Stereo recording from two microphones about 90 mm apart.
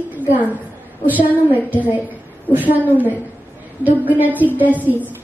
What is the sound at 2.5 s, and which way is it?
A woman's voice, 20° right (ahead or behind).